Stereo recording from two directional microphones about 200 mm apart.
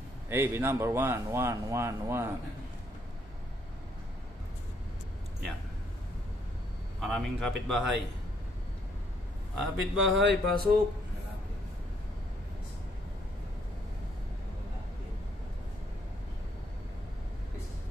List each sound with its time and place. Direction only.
0.3 s speech: 10° right (ahead or behind)
7.0 s speech: centre (ahead or behind)
9.6 s speech: centre (ahead or behind)
10.2 s speech: 50° right (ahead or behind)